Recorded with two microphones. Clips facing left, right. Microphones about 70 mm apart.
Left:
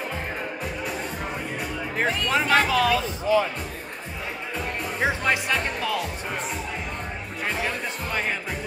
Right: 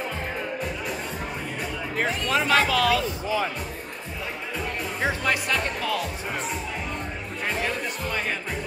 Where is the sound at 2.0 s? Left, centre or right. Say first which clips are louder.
Left 1 dB; left.